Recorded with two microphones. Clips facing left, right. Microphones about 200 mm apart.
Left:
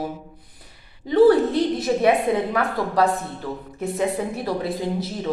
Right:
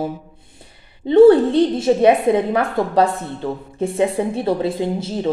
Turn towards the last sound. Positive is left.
turn(degrees=-25)  # may be behind; listen again after turning